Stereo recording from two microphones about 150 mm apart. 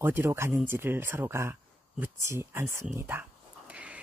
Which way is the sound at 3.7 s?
10° right (ahead or behind).